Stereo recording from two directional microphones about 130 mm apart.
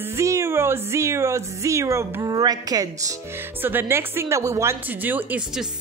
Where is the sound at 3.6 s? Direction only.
15° right (ahead or behind).